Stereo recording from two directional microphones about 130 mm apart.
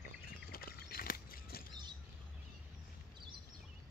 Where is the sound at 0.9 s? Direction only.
90° left.